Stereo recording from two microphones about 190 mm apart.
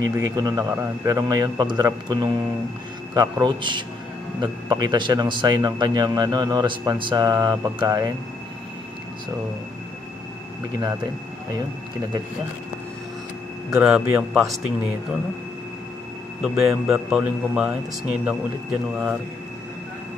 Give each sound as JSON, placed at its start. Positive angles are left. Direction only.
{"t": 0.0, "sound": "speech", "side_deg": -20}
{"t": 13.7, "sound": "a man's voice", "side_deg": -5}
{"t": 16.4, "sound": "a man's voice", "side_deg": 0}